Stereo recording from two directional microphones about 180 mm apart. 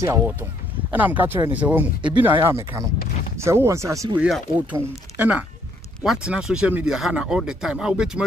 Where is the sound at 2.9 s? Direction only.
50° left (ahead or behind).